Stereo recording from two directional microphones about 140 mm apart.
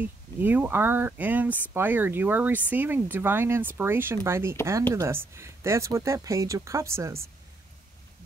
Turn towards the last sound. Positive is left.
turn(degrees=-20)  # may be behind; listen again after turning